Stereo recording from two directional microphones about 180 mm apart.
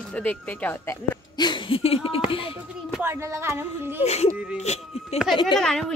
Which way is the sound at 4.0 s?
35° left (ahead or behind).